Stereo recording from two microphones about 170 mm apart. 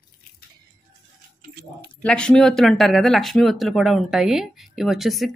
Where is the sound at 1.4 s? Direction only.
70° right (ahead or behind).